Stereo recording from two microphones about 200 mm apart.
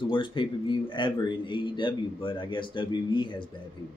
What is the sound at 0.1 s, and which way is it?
Speech, 25° left (ahead or behind).